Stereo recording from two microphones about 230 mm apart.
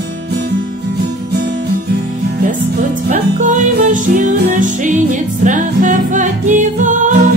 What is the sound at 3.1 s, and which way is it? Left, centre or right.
Music, right.